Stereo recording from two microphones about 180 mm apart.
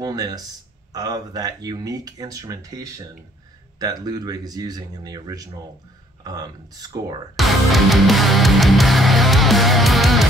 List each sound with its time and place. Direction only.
0.0 s speech: 20° right (ahead or behind)
7.3 s music: centre (ahead or behind)